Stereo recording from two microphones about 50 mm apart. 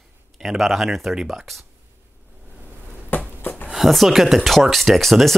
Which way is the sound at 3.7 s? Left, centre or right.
Centre.